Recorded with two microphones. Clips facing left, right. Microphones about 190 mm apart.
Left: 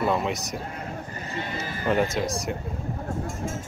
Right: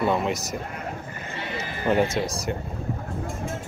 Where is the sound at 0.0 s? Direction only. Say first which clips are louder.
Right 1 dB; centre (ahead or behind).